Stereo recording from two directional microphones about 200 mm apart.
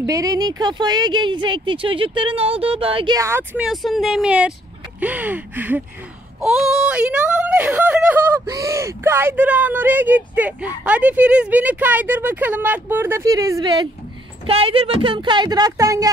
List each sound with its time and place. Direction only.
0.0 s speech: 15° right (ahead or behind)